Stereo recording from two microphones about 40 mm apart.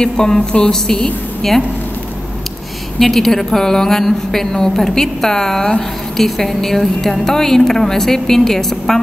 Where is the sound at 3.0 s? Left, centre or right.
Centre.